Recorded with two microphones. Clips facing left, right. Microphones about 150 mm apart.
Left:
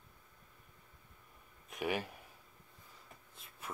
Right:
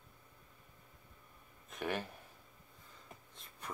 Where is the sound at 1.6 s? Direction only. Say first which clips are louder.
Left 2 dB; 10° left (ahead or behind).